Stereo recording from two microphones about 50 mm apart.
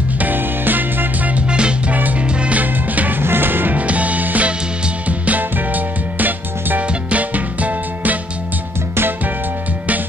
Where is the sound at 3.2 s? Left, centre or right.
Right.